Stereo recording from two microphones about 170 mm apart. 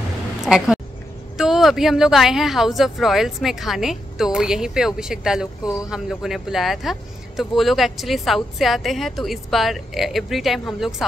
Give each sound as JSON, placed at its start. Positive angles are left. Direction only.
{"t": 0.4, "sound": "a woman's voice", "side_deg": -5}